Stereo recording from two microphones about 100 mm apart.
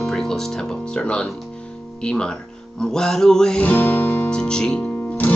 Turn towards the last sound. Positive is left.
turn(degrees=15)  # may be behind; listen again after turning